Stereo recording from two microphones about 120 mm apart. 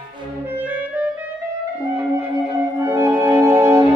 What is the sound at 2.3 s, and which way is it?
Music, 25° right (ahead or behind).